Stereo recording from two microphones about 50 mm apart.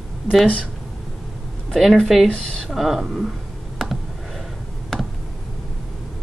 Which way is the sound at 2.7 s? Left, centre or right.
Centre.